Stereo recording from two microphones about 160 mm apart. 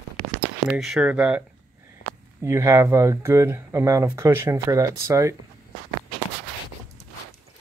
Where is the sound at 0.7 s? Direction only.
Centre (ahead or behind).